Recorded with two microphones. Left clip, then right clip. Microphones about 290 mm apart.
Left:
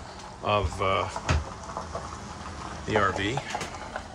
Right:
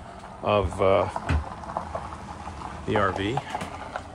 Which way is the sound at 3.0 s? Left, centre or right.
Centre.